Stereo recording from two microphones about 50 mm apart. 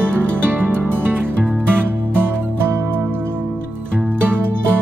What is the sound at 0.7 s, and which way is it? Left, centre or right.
Music, right.